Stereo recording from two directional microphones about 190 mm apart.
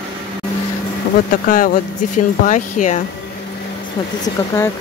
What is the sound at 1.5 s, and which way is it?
Speech, 50° left (ahead or behind).